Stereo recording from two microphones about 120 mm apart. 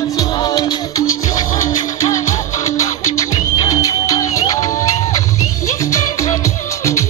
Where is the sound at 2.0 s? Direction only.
25° left (ahead or behind).